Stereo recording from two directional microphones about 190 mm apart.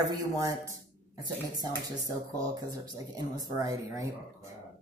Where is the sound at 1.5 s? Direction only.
20° right (ahead or behind).